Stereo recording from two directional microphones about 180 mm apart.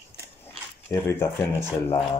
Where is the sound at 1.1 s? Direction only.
10° left (ahead or behind).